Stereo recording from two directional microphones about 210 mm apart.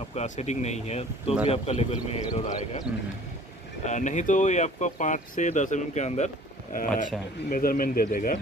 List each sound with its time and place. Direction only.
0.1 s speech: 30° left (ahead or behind)
3.8 s speech: 35° left (ahead or behind)